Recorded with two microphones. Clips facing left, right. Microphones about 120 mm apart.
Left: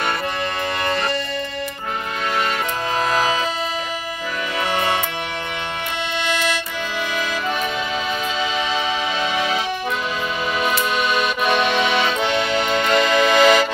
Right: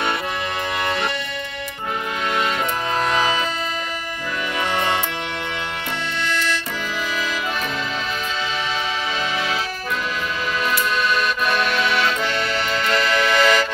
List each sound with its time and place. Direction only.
0.8 s music: centre (ahead or behind)
3.0 s music: 5° left (ahead or behind)
11.5 s music: 20° left (ahead or behind)